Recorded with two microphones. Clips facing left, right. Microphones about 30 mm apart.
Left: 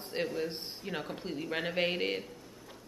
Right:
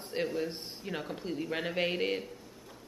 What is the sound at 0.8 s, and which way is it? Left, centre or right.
Speech, centre.